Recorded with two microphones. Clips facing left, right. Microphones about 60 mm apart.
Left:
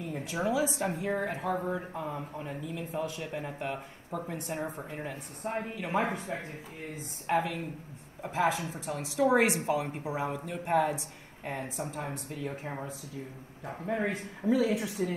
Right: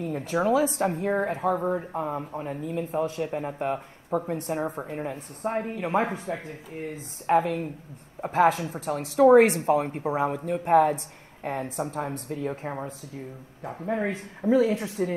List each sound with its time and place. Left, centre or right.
0.0 s speech: right
13.8 s speech: right